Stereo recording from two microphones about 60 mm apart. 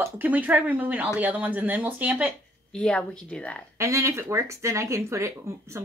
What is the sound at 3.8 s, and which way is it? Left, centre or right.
Speech, right.